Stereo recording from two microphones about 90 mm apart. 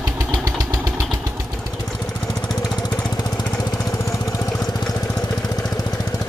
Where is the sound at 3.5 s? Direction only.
10° left (ahead or behind).